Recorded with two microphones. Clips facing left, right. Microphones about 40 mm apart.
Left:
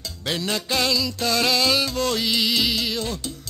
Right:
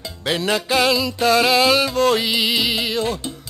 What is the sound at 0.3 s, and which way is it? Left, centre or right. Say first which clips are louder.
Music: right 6 dB; centre.